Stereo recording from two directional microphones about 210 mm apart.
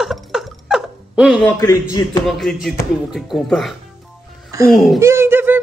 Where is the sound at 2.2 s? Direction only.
Centre (ahead or behind).